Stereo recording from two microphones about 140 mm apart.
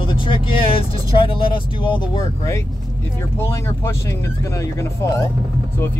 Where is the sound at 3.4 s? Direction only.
20° left (ahead or behind).